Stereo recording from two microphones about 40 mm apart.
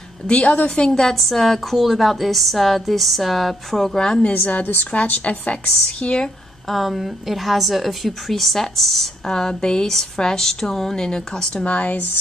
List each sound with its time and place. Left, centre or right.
0.3 s speech: left
0.7 s a woman's voice: left
1.1 s a woman's voice: centre
3.9 s a woman's voice: centre
4.4 s a woman's voice: left
4.9 s speech: left
6.0 s a woman's voice: left
6.7 s a woman's voice: centre
9.3 s speech: centre; by 12.1 s left